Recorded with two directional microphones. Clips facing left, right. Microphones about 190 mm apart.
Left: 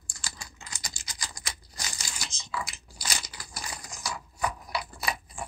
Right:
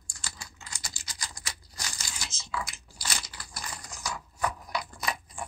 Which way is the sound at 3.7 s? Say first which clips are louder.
Even; 10° left (ahead or behind).